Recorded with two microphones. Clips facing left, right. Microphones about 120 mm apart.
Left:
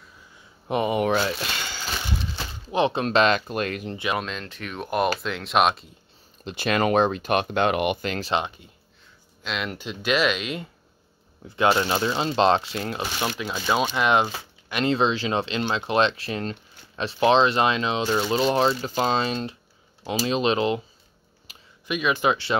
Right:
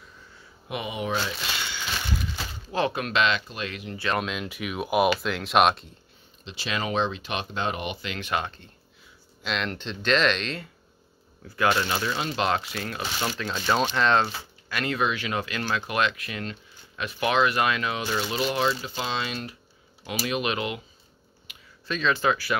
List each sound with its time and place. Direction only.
0.7 s speech: 45° left (ahead or behind); by 1.3 s 60° left (ahead or behind)
1.7 s a sound: 35° left (ahead or behind)
2.3 s speech: 25° left (ahead or behind); by 3.9 s 50° left (ahead or behind)
4.2 s speech: 5° right (ahead or behind)
6.4 s speech: 55° left (ahead or behind)
8.3 s speech: 20° left (ahead or behind)
9.4 s speech: 5° left (ahead or behind)
11.4 s speech: 25° left (ahead or behind)
13.4 s speech: 10° left (ahead or behind); by 20.8 s 30° left (ahead or behind)
21.5 s a sound: 35° left (ahead or behind)
21.8 s speech: 15° left (ahead or behind)